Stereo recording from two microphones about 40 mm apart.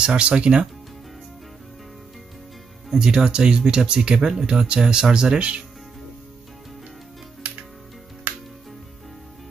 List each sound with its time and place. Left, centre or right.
0.0 s speech: right
2.9 s speech: centre